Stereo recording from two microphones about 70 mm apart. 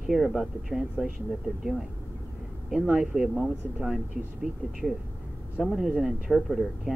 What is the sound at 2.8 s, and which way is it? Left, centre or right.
Speech, centre.